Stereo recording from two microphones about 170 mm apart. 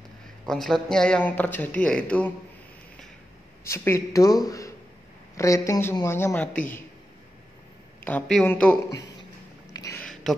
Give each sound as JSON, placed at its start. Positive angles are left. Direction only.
{"t": 0.5, "sound": "speech", "side_deg": 0}
{"t": 3.6, "sound": "speech", "side_deg": 15}
{"t": 8.0, "sound": "speech", "side_deg": 5}
{"t": 9.7, "sound": "a sound", "side_deg": 20}
{"t": 10.3, "sound": "speech", "side_deg": 5}